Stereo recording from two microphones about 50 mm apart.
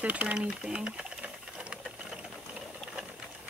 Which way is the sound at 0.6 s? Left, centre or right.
Centre.